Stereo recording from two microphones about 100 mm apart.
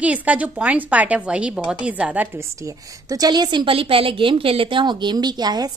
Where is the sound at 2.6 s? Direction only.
35° right (ahead or behind).